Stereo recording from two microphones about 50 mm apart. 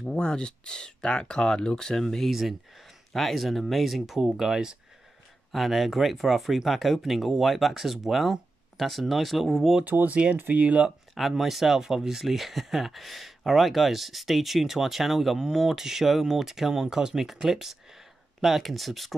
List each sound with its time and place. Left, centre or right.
0.0 s speech: centre
10.0 s speech: right
11.1 s speech: centre